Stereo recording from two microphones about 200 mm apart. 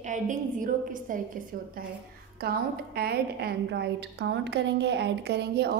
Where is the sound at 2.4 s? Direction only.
50° right (ahead or behind).